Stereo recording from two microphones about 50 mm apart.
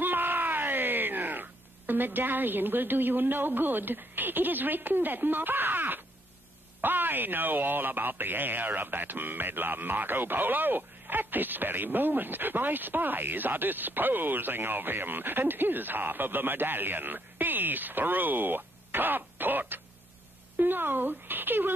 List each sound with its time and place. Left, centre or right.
0.0 s speech: right